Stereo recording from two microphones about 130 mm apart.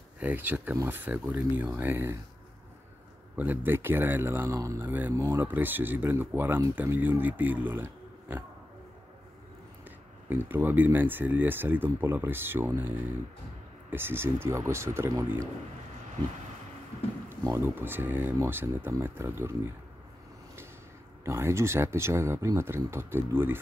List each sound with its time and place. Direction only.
0.2 s speech: 15° right (ahead or behind)
3.3 s speech: 15° right (ahead or behind)
9.8 s speech: 15° right (ahead or behind)
17.3 s speech: 20° right (ahead or behind)
21.2 s speech: 20° right (ahead or behind)